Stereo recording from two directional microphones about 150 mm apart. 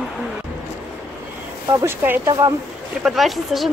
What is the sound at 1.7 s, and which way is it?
Speech, 20° right (ahead or behind).